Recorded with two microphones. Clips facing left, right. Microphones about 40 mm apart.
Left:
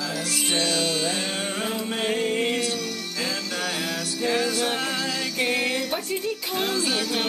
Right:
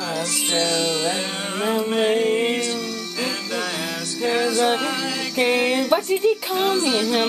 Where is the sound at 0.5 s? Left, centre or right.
Centre.